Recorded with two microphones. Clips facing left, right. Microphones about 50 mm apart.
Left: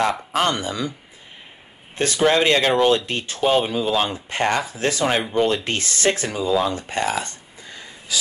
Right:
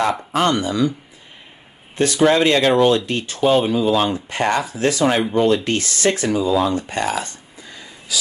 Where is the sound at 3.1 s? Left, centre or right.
Left.